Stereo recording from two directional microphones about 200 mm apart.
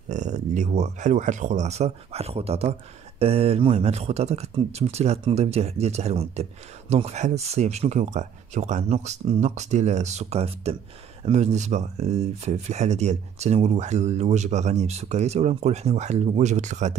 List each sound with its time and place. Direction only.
0.1 s speech: 35° right (ahead or behind)